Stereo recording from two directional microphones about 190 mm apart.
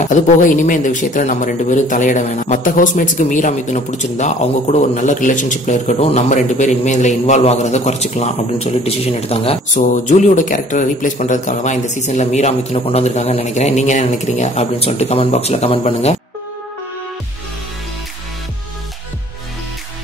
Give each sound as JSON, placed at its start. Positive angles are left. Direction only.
{"t": 0.0, "sound": "speech", "side_deg": 40}